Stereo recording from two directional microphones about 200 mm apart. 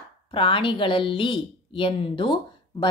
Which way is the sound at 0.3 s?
25° left (ahead or behind).